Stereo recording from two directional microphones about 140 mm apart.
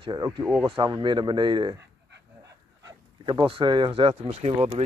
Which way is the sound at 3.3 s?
35° right (ahead or behind).